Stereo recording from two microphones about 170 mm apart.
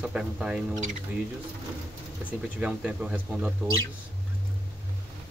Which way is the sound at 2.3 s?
5° right (ahead or behind).